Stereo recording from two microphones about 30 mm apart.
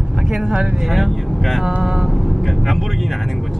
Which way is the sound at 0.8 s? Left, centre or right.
Centre.